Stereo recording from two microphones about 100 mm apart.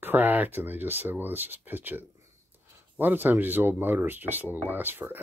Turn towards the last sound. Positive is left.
turn(degrees=-20)  # may be behind; listen again after turning